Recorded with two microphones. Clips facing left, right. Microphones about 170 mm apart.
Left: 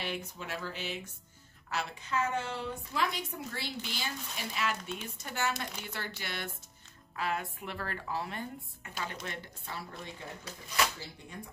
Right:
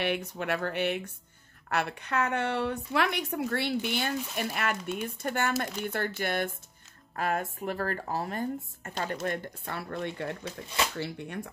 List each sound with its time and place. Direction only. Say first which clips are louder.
0.0 s a woman's voice: right 8 dB; 65° right (ahead or behind)